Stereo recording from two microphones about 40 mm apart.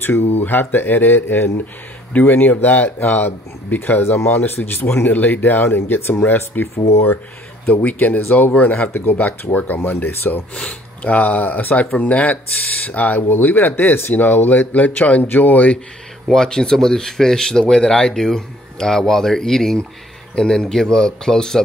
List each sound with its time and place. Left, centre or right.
0.0 s speech: left
4.6 s speech: left
5.1 s speech: left
7.6 s speech: left
8.9 s speech: left
9.8 s speech: left
10.5 s speech: left
15.2 s speech: left
16.3 s speech: centre